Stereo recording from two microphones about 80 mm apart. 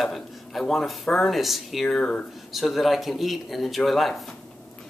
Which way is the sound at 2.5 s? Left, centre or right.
Centre.